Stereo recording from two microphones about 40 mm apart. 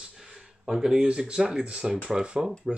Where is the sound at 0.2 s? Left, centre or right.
Centre.